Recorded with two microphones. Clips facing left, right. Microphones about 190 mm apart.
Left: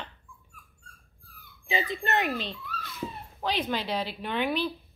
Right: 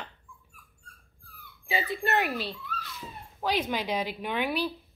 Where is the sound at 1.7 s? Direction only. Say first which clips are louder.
Even; 10° right (ahead or behind).